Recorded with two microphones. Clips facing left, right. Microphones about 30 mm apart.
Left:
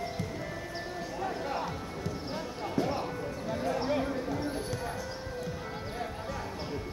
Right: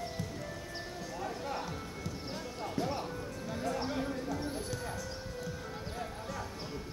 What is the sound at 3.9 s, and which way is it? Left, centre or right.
Clip-clop, left.